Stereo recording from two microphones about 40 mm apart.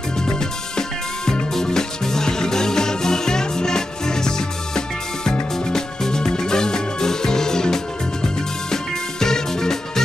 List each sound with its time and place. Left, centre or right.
0.2 s music: centre